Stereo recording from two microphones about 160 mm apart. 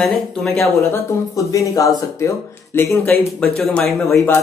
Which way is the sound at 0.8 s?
20° left (ahead or behind).